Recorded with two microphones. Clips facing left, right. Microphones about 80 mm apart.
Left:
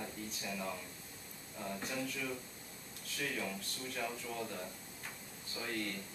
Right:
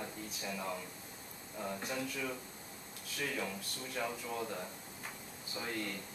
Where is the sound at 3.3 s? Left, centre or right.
Centre.